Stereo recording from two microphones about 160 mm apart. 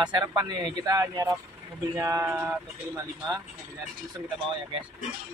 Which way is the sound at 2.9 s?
20° right (ahead or behind).